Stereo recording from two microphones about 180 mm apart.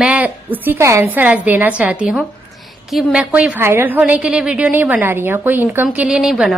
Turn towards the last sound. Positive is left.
turn(degrees=0)  # may be behind; listen again after turning